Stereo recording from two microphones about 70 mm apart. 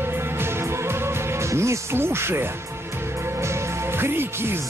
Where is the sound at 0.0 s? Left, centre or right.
Right.